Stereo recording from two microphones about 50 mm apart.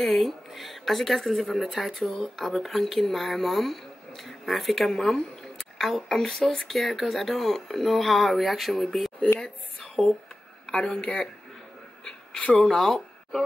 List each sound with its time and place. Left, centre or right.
0.0 s a woman's voice: centre
12.0 s a sound: centre
12.5 s a woman's voice: centre